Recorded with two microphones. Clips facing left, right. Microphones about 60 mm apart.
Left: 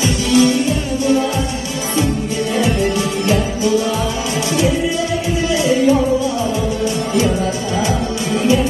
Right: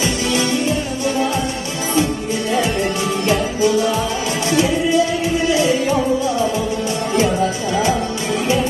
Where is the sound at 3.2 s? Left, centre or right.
Right.